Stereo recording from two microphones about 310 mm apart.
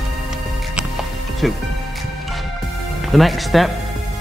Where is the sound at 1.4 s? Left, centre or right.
Centre.